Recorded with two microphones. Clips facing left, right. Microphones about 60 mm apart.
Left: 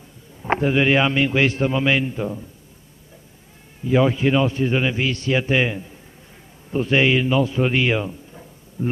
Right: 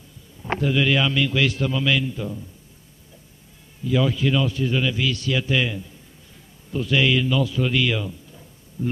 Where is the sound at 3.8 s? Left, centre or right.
Left.